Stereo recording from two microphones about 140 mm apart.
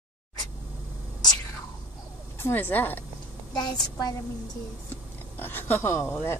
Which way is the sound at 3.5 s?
30° left (ahead or behind).